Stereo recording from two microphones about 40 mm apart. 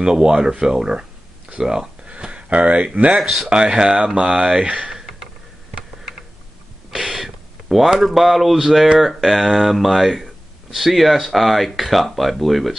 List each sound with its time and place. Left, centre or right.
0.0 s speech: right
2.0 s speech: right
3.2 s speech: centre
3.4 s speech: right
6.9 s a sound: centre
8.9 s speech: centre